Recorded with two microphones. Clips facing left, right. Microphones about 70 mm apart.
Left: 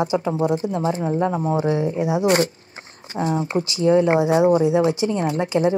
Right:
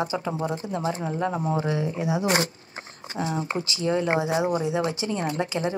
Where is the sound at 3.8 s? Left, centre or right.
Left.